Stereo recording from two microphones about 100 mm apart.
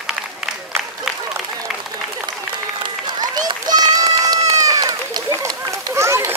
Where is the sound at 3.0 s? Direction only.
40° right (ahead or behind).